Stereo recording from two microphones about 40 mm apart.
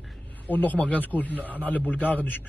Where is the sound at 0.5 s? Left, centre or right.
Left.